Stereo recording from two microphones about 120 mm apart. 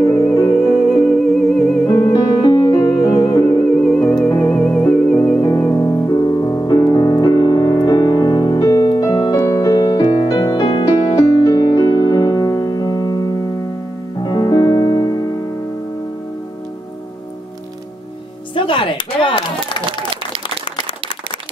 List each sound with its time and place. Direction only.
0.0 s music: 30° left (ahead or behind)
0.9 s music: centre (ahead or behind)
1.9 s music: 35° left (ahead or behind)
3.3 s music: 35° left (ahead or behind)
3.8 s music: 5° left (ahead or behind)
5.4 s music: 25° left (ahead or behind)
18.5 s a sound: 45° left (ahead or behind)